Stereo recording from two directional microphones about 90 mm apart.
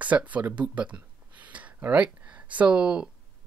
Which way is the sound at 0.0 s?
15° right (ahead or behind).